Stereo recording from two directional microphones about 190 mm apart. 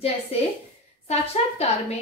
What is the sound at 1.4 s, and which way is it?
Speech, 35° left (ahead or behind).